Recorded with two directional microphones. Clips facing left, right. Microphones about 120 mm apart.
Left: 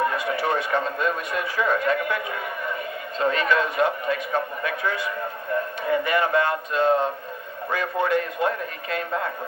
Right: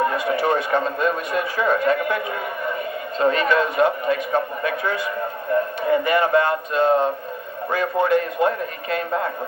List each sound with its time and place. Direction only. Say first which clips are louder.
0.0 s a man's voice: right 4 dB; 45° right (ahead or behind)